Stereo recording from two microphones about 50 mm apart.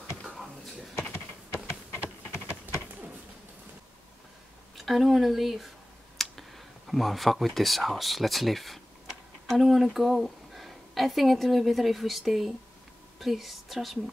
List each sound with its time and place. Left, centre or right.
1.5 s typing: right
4.7 s a woman's voice: centre